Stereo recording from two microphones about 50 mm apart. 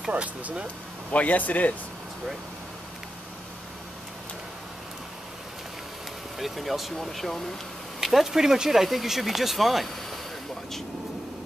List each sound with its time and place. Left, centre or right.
0.1 s speech: right
1.1 s speech: left
6.3 s speech: centre
8.0 s speech: centre